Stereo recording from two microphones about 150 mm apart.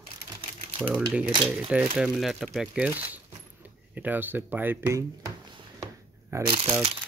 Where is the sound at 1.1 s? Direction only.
10° right (ahead or behind).